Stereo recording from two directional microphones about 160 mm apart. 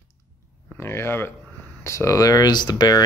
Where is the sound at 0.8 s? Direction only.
15° left (ahead or behind).